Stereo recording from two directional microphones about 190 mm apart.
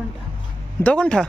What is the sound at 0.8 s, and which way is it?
Speech, 5° left (ahead or behind).